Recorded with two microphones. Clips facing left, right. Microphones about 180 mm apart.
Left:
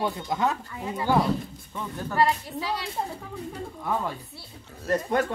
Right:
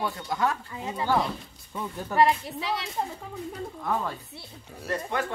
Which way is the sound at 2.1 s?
25° right (ahead or behind).